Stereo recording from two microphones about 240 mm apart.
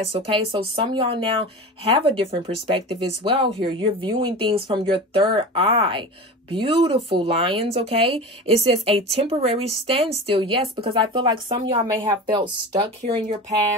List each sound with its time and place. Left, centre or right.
0.1 s speech: right